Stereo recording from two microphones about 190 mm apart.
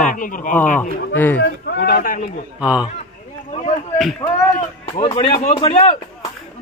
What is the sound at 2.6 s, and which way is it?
Speech, 5° right (ahead or behind).